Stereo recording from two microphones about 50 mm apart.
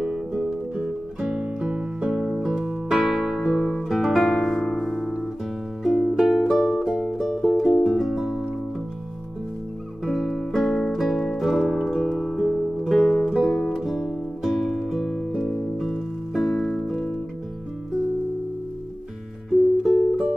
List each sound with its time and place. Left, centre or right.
0.4 s music: right
2.0 s music: centre
5.9 s music: centre
10.0 s music: centre
19.8 s music: centre